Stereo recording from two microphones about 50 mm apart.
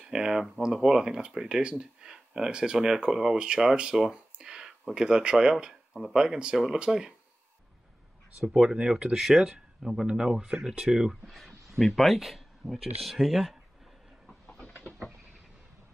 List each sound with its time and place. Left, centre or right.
0.1 s speech: centre
8.4 s speech: centre
11.2 s speech: centre
14.8 s a sound: centre